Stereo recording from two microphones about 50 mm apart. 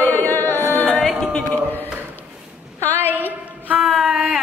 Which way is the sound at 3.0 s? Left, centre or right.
Right.